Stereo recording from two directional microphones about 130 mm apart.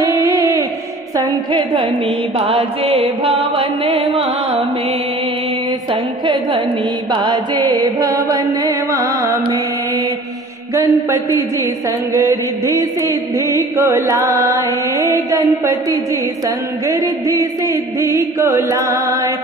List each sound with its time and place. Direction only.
0.0 s music: 25° right (ahead or behind)
2.3 s music: 45° right (ahead or behind)
7.1 s mantra: 35° right (ahead or behind)
10.7 s mantra: 20° right (ahead or behind)